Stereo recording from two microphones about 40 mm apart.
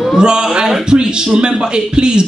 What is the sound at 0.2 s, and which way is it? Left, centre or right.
A man's voice, centre.